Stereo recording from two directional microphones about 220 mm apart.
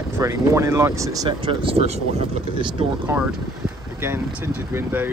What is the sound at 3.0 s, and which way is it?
Speech, 5° right (ahead or behind).